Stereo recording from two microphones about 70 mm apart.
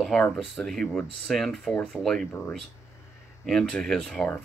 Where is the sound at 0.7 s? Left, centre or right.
Centre.